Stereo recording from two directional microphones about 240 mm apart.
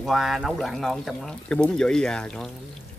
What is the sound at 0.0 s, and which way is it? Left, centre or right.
Speech, centre.